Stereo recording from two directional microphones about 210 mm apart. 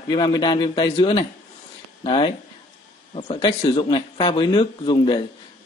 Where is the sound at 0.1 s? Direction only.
20° left (ahead or behind).